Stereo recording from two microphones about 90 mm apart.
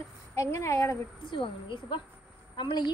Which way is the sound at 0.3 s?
30° left (ahead or behind).